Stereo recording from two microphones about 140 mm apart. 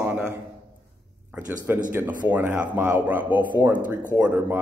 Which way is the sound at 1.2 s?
15° right (ahead or behind).